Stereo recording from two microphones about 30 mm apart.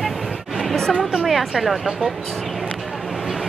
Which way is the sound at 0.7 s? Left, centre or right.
Centre.